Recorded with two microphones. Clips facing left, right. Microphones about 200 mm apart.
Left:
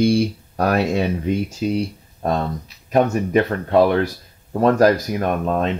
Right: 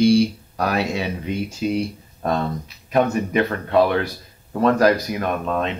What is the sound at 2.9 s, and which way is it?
Speech, 40° left (ahead or behind).